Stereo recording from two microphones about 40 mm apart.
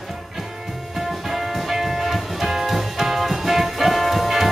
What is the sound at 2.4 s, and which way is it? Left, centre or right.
Music, centre.